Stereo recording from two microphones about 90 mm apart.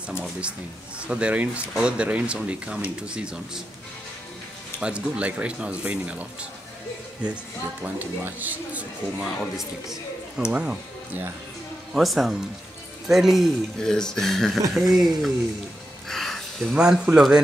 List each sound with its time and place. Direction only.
0.2 s speech: 10° right (ahead or behind)
4.7 s speech: 10° right (ahead or behind)
7.8 s speech: 20° right (ahead or behind)
9.2 s speech: 5° right (ahead or behind)
11.9 s speech: centre (ahead or behind)
16.1 s music: 5° left (ahead or behind)
16.7 s speech: 10° right (ahead or behind)